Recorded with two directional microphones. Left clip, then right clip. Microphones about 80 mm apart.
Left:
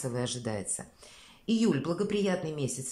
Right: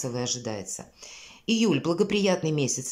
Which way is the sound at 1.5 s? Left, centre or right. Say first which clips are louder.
Right 5 dB; right.